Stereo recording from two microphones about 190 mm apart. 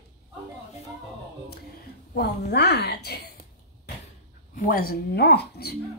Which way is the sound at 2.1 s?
60° left (ahead or behind).